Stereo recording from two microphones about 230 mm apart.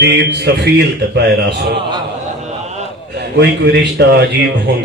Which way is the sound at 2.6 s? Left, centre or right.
Right.